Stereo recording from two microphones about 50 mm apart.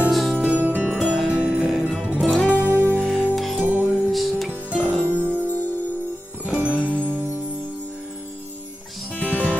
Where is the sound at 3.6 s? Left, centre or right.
Right.